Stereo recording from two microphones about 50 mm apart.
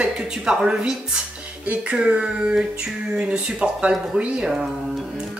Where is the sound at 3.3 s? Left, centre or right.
Centre.